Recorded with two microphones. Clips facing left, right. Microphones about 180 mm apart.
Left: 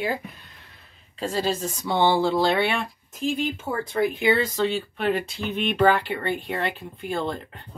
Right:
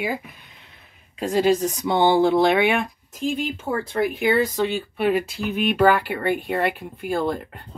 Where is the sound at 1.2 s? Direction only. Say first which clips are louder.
Right 6 dB; 15° right (ahead or behind).